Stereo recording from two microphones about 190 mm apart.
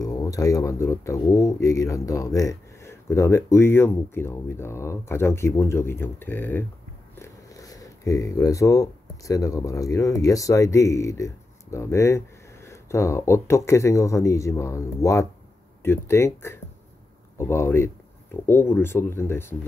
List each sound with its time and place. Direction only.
0.0 s speech: 20° left (ahead or behind)